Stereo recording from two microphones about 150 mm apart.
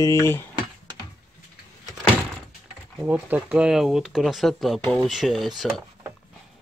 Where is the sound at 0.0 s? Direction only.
20° left (ahead or behind).